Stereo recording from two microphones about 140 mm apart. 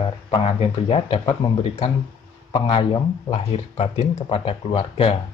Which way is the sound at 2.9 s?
45° left (ahead or behind).